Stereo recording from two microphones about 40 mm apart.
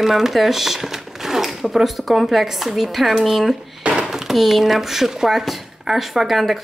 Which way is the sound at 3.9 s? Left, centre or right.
Centre.